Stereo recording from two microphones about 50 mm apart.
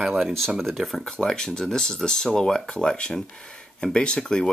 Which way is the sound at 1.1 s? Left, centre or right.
Centre.